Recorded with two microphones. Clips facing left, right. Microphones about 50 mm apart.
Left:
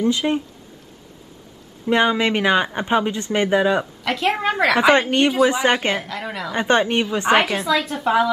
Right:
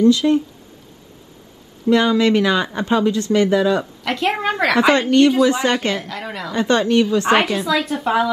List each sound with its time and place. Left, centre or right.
0.0 s speech: left
1.9 s speech: left
4.0 s a woman's voice: centre
5.4 s speech: left
6.0 s a woman's voice: centre
6.5 s speech: left
7.3 s a woman's voice: centre